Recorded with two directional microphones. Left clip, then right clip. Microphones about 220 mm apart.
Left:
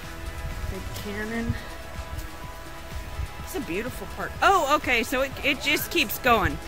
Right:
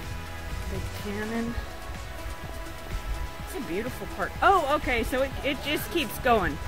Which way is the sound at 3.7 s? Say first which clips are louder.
Right 2 dB; 15° left (ahead or behind).